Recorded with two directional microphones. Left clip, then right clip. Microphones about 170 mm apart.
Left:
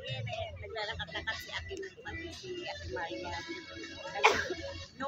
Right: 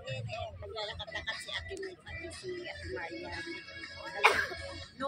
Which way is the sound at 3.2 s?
30° left (ahead or behind).